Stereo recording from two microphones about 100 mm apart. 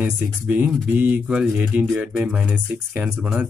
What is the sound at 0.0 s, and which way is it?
Speech, 15° right (ahead or behind).